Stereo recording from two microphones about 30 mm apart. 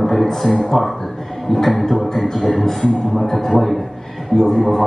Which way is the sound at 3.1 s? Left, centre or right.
Centre.